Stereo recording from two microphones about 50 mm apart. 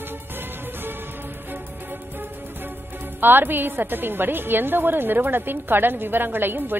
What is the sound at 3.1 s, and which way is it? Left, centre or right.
A woman's voice, right.